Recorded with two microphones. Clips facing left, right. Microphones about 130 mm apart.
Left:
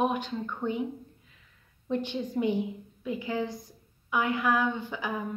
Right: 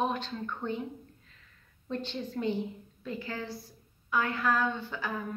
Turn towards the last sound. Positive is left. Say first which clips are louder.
# left 3 dB
turn(degrees=15)  # may be behind; listen again after turning